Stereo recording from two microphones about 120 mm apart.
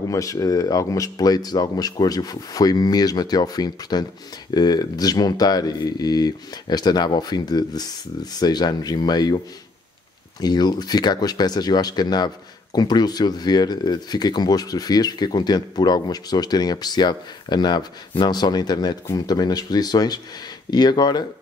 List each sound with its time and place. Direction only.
0.1 s speech: 25° left (ahead or behind)
10.4 s speech: 35° left (ahead or behind)